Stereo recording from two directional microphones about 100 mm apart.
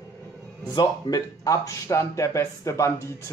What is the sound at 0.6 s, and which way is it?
Speech, 40° left (ahead or behind).